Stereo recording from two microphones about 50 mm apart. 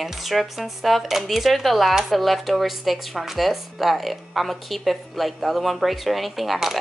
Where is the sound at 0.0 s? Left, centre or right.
Centre.